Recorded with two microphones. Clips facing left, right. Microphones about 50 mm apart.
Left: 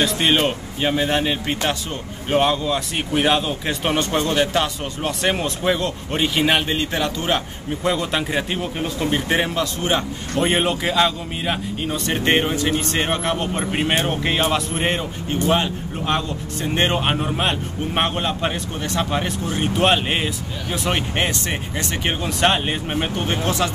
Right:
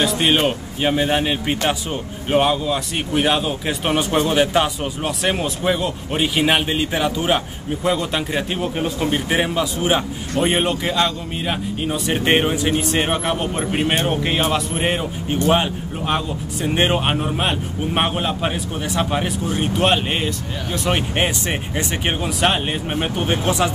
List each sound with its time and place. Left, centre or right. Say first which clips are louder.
0.0 s a man's voice: right 1 dB; centre
10.4 s a man's voice: even; centre
11.8 s speech: right 2 dB; centre
15.4 s a man's voice: right 2 dB; centre
21.2 s speech: right 2 dB; centre
22.4 s a man's voice: left 1 dB; centre
23.1 s speech: right 5 dB; centre